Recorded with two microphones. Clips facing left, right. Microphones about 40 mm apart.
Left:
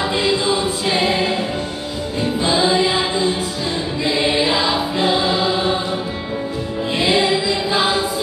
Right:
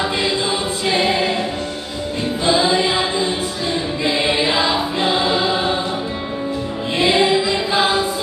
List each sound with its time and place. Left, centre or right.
0.8 s choir: centre
2.4 s music: centre
4.0 s choir: centre
7.0 s music: centre